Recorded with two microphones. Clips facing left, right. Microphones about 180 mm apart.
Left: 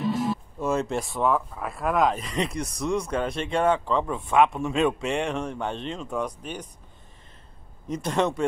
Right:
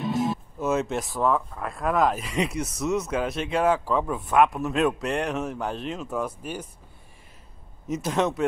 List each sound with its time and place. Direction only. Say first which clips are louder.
0.1 s music: right 1 dB; 25° right (ahead or behind)
0.6 s speech: right 1 dB; centre (ahead or behind)
7.9 s speech: even; centre (ahead or behind)